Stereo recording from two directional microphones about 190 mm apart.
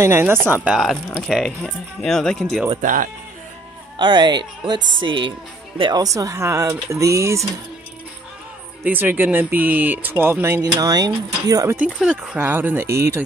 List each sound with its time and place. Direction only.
0.0 s speech: 15° right (ahead or behind); by 2.6 s 5° left (ahead or behind)
2.8 s speech: 45° right (ahead or behind)
4.0 s speech: 25° right (ahead or behind)
8.8 s speech: 10° right (ahead or behind)